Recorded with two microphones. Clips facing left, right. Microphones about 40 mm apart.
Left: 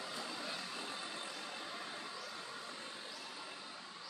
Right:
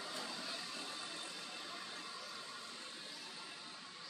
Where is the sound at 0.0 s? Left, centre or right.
Centre.